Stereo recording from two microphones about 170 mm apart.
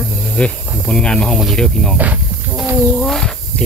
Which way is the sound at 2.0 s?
10° right (ahead or behind).